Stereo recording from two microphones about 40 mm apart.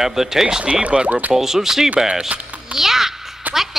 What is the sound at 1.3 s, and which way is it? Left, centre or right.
A child's voice, centre.